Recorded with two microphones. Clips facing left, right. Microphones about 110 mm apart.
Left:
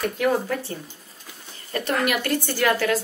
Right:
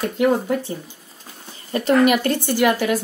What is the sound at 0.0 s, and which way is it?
A woman's voice, 20° right (ahead or behind).